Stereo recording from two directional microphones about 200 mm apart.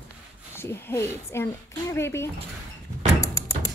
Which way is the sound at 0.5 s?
10° left (ahead or behind).